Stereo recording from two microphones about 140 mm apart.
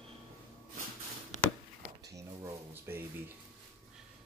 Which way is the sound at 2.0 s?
20° right (ahead or behind).